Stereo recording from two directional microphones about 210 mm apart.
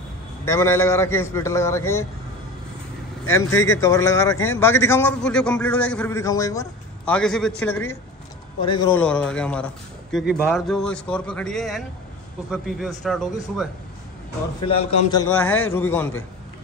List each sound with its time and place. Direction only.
0.5 s a man's voice: 15° left (ahead or behind)
3.3 s a man's voice: 15° left (ahead or behind)
7.2 s a man's voice: 5° left (ahead or behind)
8.5 s a man's voice: 20° left (ahead or behind)
8.9 s a man's voice: 5° left (ahead or behind)
14.6 s a man's voice: 25° left (ahead or behind)
15.3 s a man's voice: 5° left (ahead or behind)